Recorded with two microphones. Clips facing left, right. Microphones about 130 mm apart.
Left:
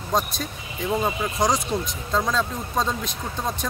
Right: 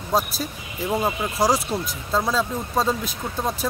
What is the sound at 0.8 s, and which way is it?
Speech, 20° right (ahead or behind).